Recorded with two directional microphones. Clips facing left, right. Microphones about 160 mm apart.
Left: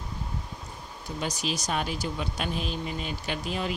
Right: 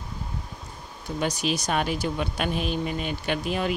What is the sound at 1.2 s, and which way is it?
Speech, 60° right (ahead or behind).